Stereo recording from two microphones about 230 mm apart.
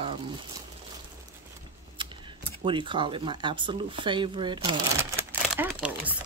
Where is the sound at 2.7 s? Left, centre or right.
Right.